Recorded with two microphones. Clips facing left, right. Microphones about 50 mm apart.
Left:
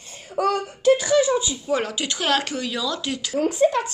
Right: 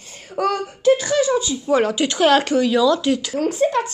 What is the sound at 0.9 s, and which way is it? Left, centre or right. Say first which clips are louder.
Speech: even; centre.